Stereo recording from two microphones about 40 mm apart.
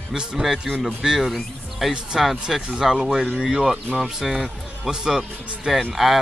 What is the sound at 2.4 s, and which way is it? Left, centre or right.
Speech, centre.